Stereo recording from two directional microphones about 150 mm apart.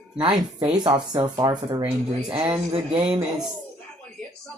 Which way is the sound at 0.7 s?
30° right (ahead or behind).